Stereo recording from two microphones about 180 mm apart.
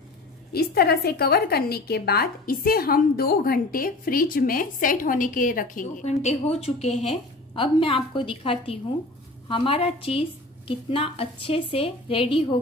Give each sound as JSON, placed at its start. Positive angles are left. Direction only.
{"t": 0.5, "sound": "a woman's voice", "side_deg": 60}